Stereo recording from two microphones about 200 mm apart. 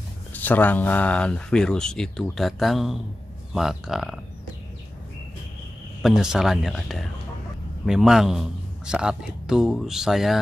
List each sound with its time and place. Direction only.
0.3 s speech: 10° left (ahead or behind)
6.0 s speech: centre (ahead or behind)